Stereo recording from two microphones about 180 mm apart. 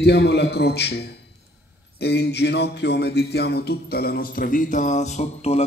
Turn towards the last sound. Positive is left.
turn(degrees=35)  # may be behind; listen again after turning